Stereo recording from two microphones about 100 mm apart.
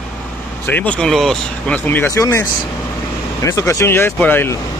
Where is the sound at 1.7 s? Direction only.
20° left (ahead or behind).